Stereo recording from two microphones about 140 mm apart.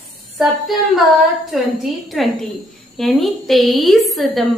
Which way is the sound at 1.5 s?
Centre (ahead or behind).